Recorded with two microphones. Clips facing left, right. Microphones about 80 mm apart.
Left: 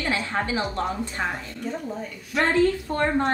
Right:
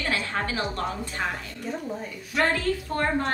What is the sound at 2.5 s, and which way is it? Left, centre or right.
Speech, left.